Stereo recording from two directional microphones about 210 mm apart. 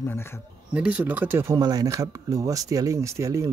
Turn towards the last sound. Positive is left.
turn(degrees=-15)  # may be behind; listen again after turning